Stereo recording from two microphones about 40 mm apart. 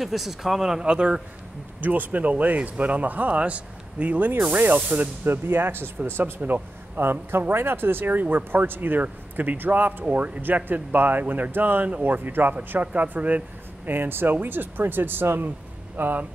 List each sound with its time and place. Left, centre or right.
0.0 s speech: centre; by 1.2 s right
1.8 s speech: right
4.5 s speech: right
4.7 s speech: right
5.2 s a man's voice: right
8.6 s speech: right
9.0 s speech: right
10.1 s speech: right
10.4 s speech: right
12.8 s speech: right
13.8 s speech: right